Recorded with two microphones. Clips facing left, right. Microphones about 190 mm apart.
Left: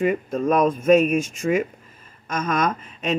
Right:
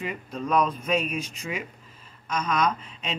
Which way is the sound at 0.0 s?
50° left (ahead or behind).